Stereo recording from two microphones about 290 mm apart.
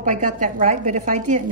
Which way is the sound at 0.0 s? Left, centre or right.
Right.